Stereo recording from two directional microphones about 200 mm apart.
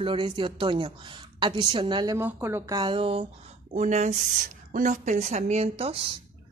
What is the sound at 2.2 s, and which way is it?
Speech, 10° right (ahead or behind).